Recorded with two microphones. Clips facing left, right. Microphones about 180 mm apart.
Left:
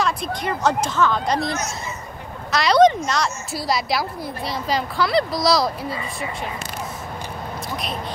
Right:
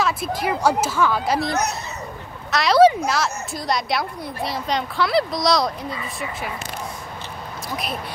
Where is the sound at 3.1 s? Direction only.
Centre (ahead or behind).